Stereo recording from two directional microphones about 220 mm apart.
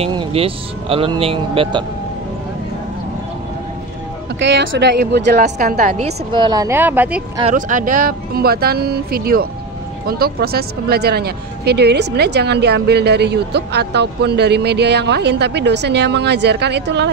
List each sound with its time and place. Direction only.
0.0 s speech: 25° right (ahead or behind)
4.4 s speech: 55° right (ahead or behind); by 7.2 s 5° right (ahead or behind)
7.5 s speech: 35° right (ahead or behind)